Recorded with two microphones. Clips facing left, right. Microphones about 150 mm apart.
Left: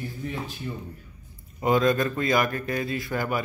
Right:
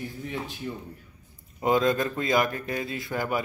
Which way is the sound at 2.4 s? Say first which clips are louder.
Left 3 dB; 15° right (ahead or behind).